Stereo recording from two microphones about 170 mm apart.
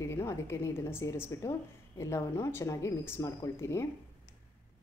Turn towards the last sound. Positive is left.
turn(degrees=15)  # may be behind; listen again after turning